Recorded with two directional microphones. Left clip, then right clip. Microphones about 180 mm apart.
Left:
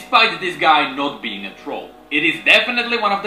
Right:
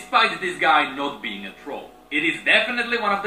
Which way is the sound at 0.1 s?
45° left (ahead or behind).